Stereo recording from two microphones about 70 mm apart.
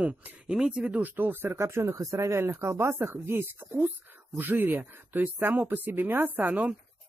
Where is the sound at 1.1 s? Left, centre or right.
Right.